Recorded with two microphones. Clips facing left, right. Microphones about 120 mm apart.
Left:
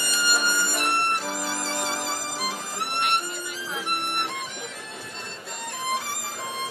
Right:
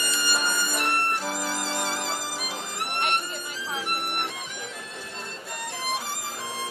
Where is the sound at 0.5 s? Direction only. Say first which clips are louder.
Left 2 dB; 20° left (ahead or behind).